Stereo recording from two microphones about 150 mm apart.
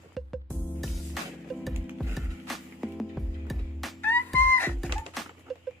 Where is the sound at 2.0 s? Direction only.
Centre (ahead or behind).